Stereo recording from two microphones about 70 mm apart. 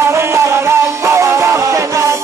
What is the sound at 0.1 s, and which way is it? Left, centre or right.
Music, right.